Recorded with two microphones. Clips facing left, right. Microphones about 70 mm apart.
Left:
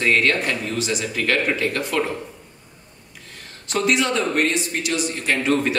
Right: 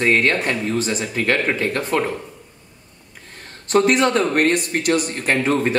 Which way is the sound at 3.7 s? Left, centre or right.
Right.